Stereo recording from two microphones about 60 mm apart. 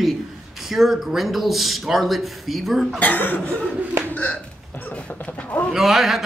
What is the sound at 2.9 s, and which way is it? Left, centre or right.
Speech, left.